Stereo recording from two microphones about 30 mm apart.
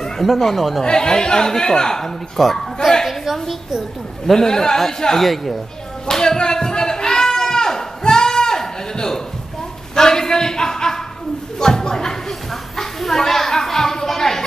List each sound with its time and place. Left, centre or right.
0.4 s a man's voice: centre
0.8 s speech: left; by 2.9 s centre
4.4 s a man's voice: centre
6.0 s speech: centre
6.3 s a sound: left
9.9 s speech: centre
11.6 s a sound: centre